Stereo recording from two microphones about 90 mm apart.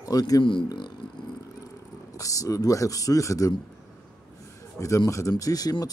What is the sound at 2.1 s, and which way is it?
Speech, 40° left (ahead or behind).